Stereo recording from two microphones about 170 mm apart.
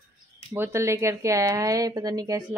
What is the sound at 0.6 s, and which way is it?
Speech, 15° right (ahead or behind).